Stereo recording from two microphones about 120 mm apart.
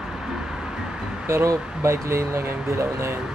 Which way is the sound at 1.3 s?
20° right (ahead or behind).